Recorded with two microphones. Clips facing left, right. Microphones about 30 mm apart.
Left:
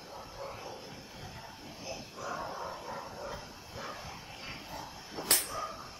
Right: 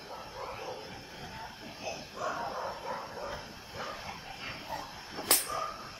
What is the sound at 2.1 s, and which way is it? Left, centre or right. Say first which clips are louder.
Bow-wow: right 4 dB; right.